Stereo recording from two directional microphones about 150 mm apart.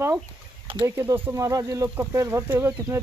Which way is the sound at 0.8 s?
15° right (ahead or behind).